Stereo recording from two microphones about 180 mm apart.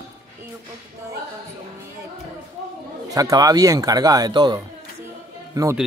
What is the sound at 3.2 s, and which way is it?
Speech, 20° right (ahead or behind).